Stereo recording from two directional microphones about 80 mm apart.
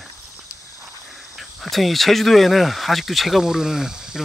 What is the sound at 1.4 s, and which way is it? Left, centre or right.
Speech, centre.